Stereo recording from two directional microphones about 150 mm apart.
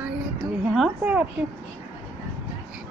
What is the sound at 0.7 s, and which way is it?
Speech, 5° right (ahead or behind).